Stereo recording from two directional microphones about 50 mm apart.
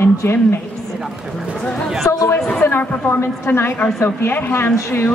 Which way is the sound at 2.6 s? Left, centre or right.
Left.